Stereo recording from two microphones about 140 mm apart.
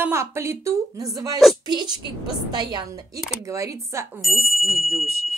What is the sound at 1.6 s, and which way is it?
A woman's voice, 30° right (ahead or behind).